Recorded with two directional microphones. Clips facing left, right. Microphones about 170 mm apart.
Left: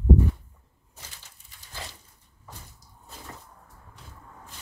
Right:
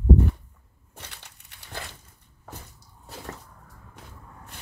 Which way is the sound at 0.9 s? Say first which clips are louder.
Right 4 dB; 65° right (ahead or behind).